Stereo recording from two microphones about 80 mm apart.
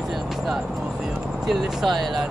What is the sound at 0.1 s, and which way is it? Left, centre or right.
Music, centre.